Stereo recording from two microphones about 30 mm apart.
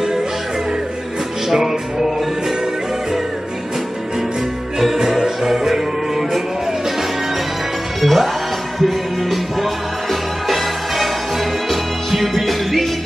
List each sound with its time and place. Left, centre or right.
1.5 s music: centre
4.9 s music: centre
8.0 s music: centre
11.7 s music: centre